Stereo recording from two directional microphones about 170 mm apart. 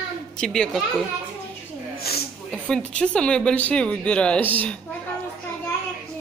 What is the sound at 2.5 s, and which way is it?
Speech, 5° left (ahead or behind).